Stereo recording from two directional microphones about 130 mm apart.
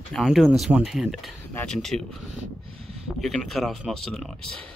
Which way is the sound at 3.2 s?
Centre (ahead or behind).